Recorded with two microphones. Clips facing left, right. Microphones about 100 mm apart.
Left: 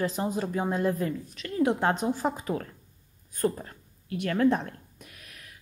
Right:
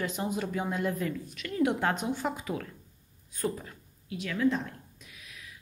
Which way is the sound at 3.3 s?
50° left (ahead or behind).